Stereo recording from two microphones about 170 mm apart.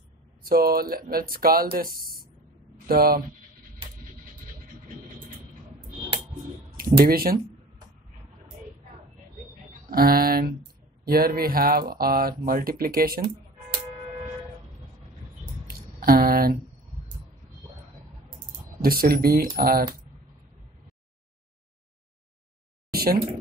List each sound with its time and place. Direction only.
0.4 s speech: 60° right (ahead or behind)
7.0 s speech: 60° right (ahead or behind)
9.8 s speech: 60° right (ahead or behind)
15.6 s a sound: 60° right (ahead or behind)
18.8 s speech: 60° right (ahead or behind)
22.9 s a sound: 60° right (ahead or behind)